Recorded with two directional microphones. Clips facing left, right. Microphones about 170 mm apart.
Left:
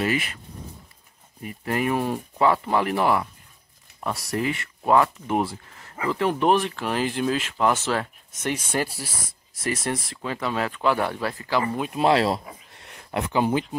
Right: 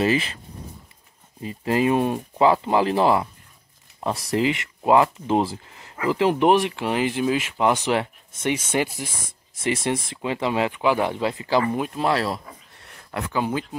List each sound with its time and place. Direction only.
0.0 s speech: 25° right (ahead or behind)
1.4 s speech: 20° right (ahead or behind)
4.3 s speech: 20° right (ahead or behind)
11.9 s speech: 20° left (ahead or behind)